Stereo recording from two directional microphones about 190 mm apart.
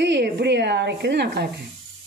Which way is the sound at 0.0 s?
65° right (ahead or behind).